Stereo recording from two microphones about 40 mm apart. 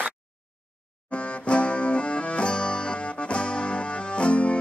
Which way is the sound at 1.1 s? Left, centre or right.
Left.